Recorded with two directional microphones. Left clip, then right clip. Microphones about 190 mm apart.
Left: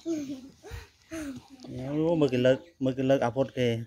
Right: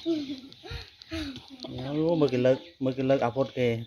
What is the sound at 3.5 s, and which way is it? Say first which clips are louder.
Speech: right 1 dB; 85° left.